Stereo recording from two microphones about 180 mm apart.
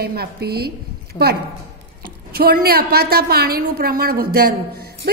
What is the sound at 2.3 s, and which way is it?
A woman's voice, 60° right (ahead or behind).